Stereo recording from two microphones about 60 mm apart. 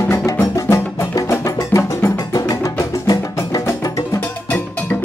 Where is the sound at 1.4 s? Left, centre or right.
Left.